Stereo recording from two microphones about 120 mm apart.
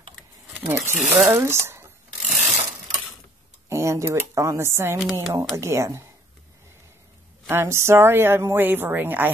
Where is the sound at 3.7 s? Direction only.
25° right (ahead or behind).